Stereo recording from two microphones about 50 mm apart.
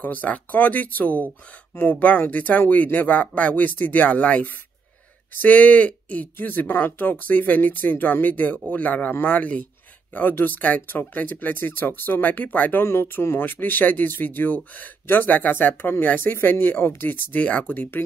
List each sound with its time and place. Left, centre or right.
0.0 s speech: left
6.3 s a man's voice: left
12.8 s speech: left
13.4 s speech: left